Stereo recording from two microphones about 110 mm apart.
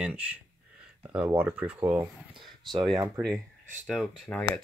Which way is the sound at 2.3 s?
45° right (ahead or behind).